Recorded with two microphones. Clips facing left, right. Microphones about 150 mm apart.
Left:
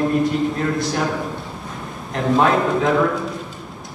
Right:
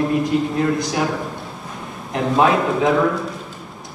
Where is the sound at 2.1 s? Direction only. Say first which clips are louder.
Even; 5° right (ahead or behind).